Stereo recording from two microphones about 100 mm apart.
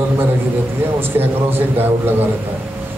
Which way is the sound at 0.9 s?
20° right (ahead or behind).